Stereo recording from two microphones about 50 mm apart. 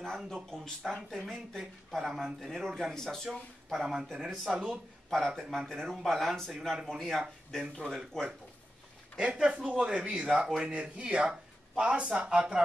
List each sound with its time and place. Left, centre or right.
0.0 s speech: centre
3.3 s speech: centre
5.1 s speech: centre
9.3 s speech: centre